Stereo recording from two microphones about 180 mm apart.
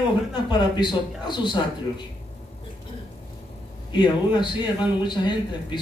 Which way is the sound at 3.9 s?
25° left (ahead or behind).